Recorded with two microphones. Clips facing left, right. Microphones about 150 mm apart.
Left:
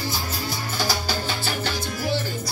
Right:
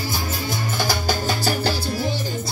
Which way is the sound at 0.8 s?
50° right (ahead or behind).